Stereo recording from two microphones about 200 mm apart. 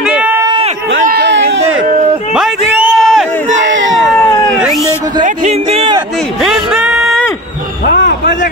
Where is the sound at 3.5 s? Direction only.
70° right (ahead or behind).